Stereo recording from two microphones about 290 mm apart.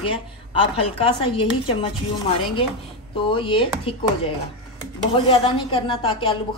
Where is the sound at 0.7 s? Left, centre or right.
Centre.